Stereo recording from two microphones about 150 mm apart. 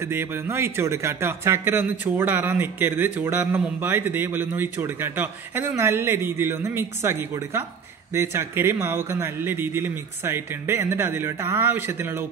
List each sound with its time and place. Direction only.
0.0 s speech: 15° right (ahead or behind)